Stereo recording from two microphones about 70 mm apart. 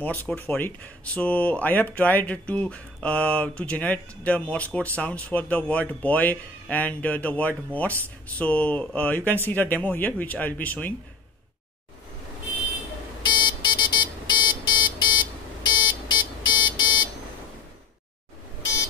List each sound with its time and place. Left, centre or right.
0.0 s speech: left
13.2 s buzzer: left